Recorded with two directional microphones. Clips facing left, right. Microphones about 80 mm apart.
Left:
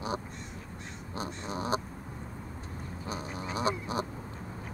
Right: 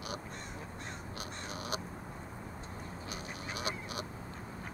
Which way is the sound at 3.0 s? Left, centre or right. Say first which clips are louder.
Left 8 dB; left.